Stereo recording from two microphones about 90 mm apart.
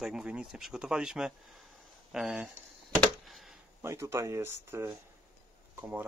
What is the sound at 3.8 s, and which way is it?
Speech, 30° right (ahead or behind).